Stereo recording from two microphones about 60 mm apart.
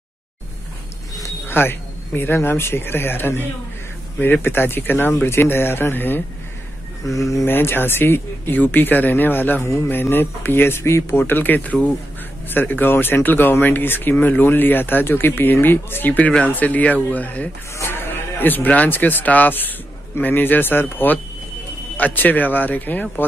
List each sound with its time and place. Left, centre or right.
1.5 s speech: left
7.4 s speech: left
17.7 s speech: left